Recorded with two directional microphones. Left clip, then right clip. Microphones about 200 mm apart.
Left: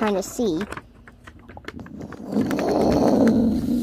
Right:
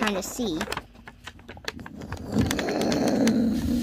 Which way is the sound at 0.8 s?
35° right (ahead or behind).